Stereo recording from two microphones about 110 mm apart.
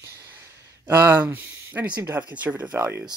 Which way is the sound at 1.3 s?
20° right (ahead or behind).